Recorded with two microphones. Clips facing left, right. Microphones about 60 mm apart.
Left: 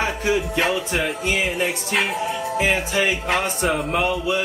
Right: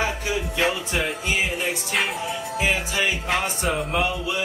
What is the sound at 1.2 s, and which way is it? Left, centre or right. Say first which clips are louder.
Speech: left 3 dB; left.